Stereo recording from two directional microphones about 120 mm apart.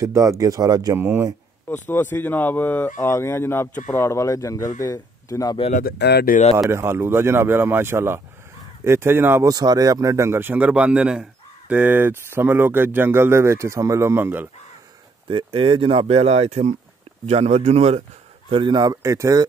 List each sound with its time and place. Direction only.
0.0 s a man's voice: 25° right (ahead or behind)
0.9 s speech: 15° right (ahead or behind)
1.7 s speech: 15° left (ahead or behind)
6.7 s a man's voice: 20° right (ahead or behind)
9.5 s a man's voice: 30° right (ahead or behind); by 14.5 s 15° right (ahead or behind)
15.2 s a man's voice: 45° right (ahead or behind); by 18.0 s 60° right (ahead or behind)
18.5 s speech: 40° right (ahead or behind)